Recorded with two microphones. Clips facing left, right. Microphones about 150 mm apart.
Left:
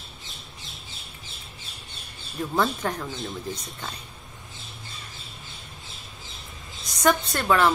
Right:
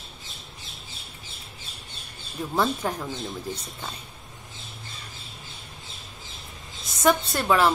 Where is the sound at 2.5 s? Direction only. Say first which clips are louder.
Even; 10° right (ahead or behind).